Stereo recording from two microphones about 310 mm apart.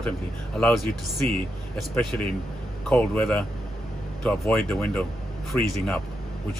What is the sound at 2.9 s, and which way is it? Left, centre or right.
Speech, centre.